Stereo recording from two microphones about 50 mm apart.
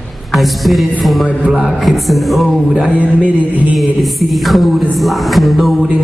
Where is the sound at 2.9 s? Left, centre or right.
Left.